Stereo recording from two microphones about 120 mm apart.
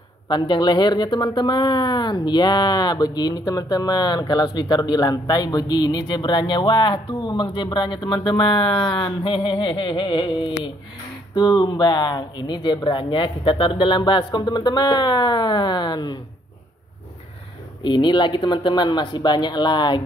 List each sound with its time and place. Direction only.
0.3 s speech: 35° left (ahead or behind)
17.8 s speech: 40° left (ahead or behind)